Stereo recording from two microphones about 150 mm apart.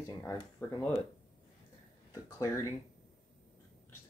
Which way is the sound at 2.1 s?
20° left (ahead or behind).